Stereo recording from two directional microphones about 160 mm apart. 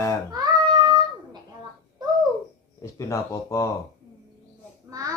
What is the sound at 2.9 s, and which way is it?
Mantra, 20° left (ahead or behind).